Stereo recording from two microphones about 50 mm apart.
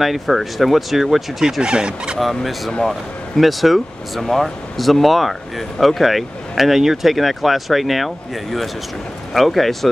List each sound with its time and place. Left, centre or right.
0.0 s speech: centre
1.4 s speech: centre
2.1 s speech: centre